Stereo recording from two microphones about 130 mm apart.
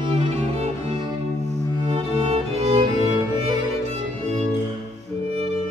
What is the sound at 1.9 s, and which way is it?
Music, 35° right (ahead or behind).